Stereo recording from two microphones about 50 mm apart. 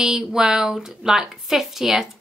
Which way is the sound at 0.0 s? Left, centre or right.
Centre.